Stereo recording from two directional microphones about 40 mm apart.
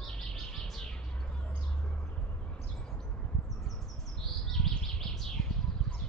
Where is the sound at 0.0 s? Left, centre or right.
Centre.